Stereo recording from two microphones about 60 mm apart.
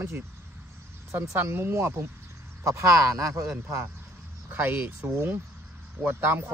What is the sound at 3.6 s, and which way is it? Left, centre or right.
Speech, right.